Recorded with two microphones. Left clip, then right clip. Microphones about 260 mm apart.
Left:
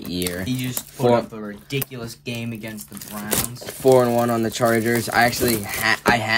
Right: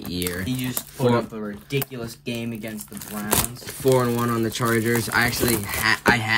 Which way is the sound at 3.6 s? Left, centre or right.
Centre.